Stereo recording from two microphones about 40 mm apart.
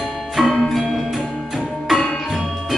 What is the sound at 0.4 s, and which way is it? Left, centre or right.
Music, centre.